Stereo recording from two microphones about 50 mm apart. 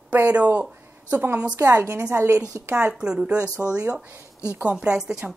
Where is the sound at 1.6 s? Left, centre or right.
Right.